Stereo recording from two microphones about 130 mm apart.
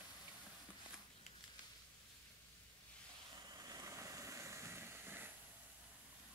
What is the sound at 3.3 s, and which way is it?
Vehicle, 30° right (ahead or behind).